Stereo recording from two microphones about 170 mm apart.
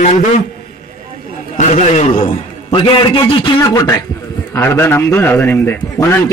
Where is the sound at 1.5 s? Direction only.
45° left (ahead or behind).